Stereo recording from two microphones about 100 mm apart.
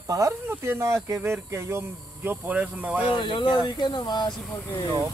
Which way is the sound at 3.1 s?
55° left (ahead or behind).